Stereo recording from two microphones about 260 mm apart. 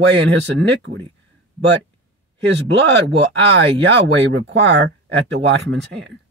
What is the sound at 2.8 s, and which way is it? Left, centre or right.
Speech, right.